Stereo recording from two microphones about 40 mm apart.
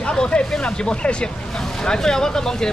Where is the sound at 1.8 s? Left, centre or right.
Centre.